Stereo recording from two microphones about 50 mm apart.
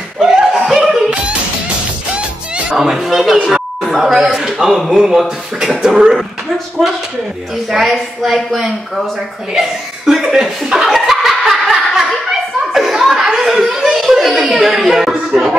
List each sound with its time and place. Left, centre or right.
0.2 s laughter: centre
0.7 s yodeling: centre
2.1 s music: right
2.8 s a sound: centre
4.4 s a woman's voice: centre
10.9 s snicker: centre
14.0 s chuckle: centre